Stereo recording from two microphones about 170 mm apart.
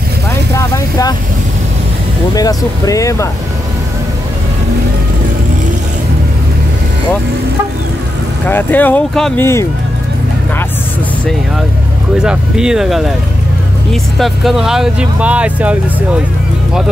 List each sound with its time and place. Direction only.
0.6 s vehicle: 20° left (ahead or behind)
2.3 s speech: 20° left (ahead or behind)
8.5 s speech: 10° left (ahead or behind)
12.2 s speech: 5° right (ahead or behind)
14.1 s speech: centre (ahead or behind)